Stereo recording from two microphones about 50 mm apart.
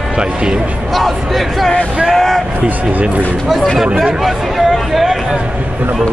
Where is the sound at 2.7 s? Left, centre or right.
Right.